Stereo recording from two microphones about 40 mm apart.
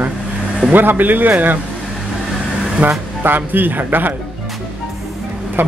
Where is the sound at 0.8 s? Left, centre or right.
Right.